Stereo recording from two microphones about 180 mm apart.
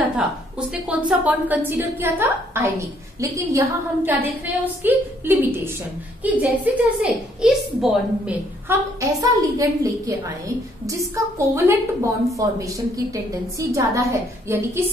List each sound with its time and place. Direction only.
0.1 s a woman's voice: 5° right (ahead or behind)